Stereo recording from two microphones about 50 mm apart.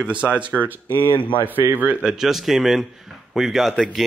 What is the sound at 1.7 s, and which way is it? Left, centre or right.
Speech, right.